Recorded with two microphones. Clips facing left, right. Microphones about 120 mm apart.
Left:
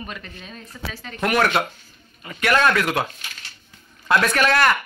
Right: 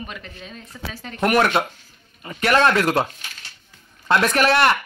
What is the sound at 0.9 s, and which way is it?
Speech, 25° right (ahead or behind).